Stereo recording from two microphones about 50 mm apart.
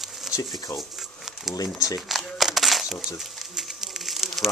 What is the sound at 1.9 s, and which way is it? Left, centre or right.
Camera, centre.